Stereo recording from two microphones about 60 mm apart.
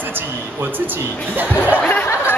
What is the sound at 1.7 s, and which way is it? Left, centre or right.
Speech, left.